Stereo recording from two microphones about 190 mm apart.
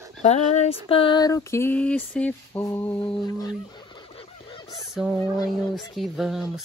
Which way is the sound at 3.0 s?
25° left (ahead or behind).